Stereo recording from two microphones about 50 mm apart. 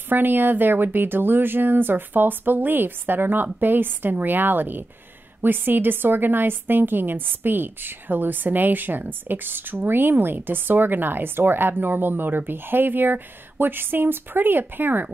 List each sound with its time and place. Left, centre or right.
0.1 s a woman's voice: right